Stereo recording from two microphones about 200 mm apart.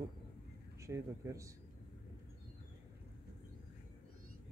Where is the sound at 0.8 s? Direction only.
15° right (ahead or behind).